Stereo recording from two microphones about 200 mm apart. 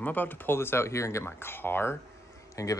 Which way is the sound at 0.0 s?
10° left (ahead or behind).